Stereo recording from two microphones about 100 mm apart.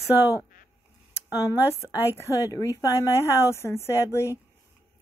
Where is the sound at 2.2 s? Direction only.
35° left (ahead or behind).